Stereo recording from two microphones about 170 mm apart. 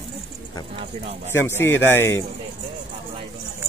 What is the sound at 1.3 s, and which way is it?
Speech, 15° left (ahead or behind).